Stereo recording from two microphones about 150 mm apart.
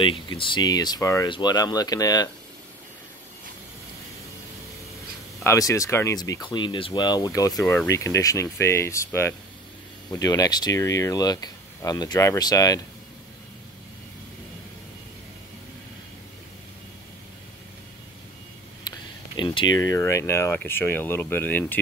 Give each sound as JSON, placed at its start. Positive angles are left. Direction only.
{"t": 0.0, "sound": "speech", "side_deg": 35}
{"t": 5.4, "sound": "speech", "side_deg": 20}
{"t": 18.9, "sound": "speech", "side_deg": 30}